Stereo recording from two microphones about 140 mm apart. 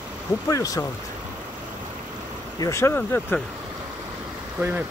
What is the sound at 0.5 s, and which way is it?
Speech, 25° left (ahead or behind).